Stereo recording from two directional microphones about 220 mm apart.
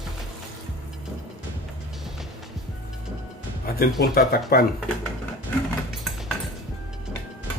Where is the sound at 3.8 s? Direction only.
45° left (ahead or behind).